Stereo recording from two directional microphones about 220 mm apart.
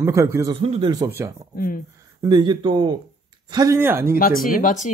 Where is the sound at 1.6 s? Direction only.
40° left (ahead or behind).